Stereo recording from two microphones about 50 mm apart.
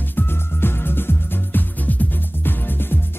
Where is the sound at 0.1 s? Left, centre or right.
Left.